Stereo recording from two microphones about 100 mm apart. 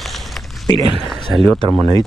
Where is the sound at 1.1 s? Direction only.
5° left (ahead or behind).